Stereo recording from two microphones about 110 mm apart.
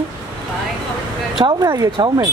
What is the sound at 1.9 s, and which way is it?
Speech, 45° right (ahead or behind).